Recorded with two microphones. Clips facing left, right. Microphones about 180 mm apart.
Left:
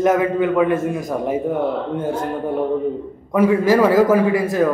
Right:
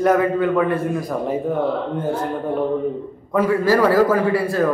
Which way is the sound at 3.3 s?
15° left (ahead or behind).